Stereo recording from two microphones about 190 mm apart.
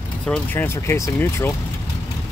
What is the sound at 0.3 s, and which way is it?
Speech, 10° left (ahead or behind).